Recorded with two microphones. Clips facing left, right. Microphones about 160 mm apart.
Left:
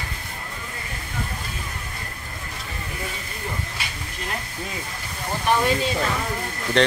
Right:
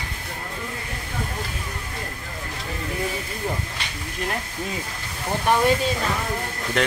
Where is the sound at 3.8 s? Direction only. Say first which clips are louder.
Even; 10° left (ahead or behind).